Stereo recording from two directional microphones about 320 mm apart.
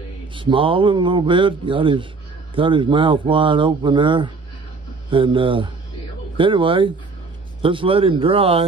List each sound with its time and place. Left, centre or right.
0.3 s speech: centre